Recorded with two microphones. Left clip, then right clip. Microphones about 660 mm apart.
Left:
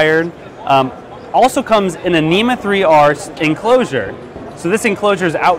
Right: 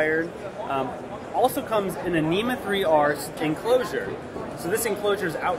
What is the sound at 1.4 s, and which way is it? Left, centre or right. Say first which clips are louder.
Speech: left 10 dB; left.